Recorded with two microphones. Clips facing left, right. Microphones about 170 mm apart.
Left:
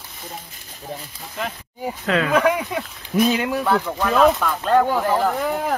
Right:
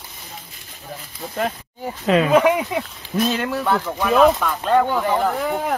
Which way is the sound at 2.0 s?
20° right (ahead or behind).